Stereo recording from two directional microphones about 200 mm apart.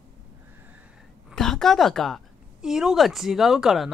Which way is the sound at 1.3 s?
Centre (ahead or behind).